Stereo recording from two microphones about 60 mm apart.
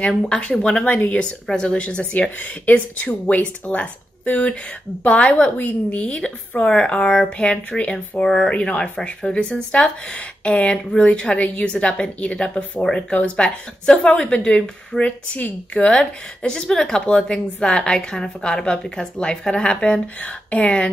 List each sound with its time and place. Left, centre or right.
0.2 s a woman's voice: centre